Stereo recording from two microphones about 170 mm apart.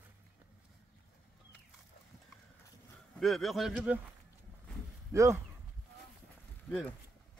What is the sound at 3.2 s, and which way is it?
Speech, centre (ahead or behind).